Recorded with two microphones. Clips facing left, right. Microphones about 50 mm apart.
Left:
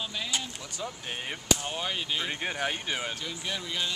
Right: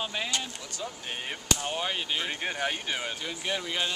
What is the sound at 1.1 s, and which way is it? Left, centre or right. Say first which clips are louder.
Speech: left 2 dB; centre.